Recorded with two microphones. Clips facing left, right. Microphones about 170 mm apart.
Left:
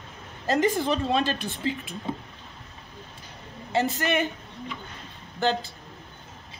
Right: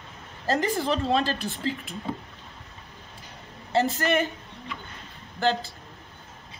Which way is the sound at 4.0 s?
20° left (ahead or behind).